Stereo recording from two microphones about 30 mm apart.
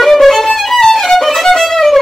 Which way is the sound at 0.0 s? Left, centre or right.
Centre.